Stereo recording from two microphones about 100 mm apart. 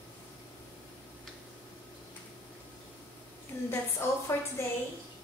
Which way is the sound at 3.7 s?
25° left (ahead or behind).